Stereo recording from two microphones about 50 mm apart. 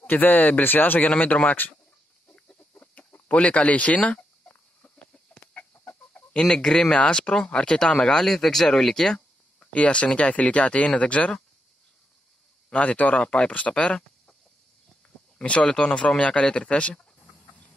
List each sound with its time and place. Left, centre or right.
0.0 s speech: left
1.0 s speech: left
2.7 s chicken: left
5.1 s chicken: left
6.4 s speech: centre
9.6 s speech: left
12.6 s speech: left
15.3 s speech: left